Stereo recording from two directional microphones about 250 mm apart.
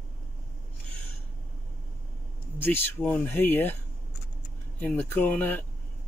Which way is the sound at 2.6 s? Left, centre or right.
Centre.